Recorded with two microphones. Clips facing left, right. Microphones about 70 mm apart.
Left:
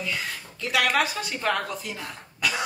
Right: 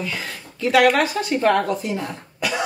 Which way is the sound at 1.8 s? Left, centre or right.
Centre.